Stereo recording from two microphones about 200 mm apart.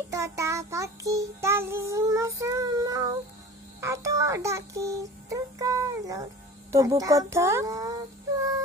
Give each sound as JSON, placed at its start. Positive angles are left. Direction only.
{"t": 0.1, "sound": "child singing", "side_deg": -15}
{"t": 3.8, "sound": "a child's voice", "side_deg": -15}
{"t": 6.7, "sound": "child singing", "side_deg": -15}